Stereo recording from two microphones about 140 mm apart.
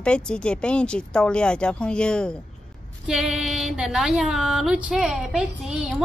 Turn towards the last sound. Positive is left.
turn(degrees=-5)  # may be behind; listen again after turning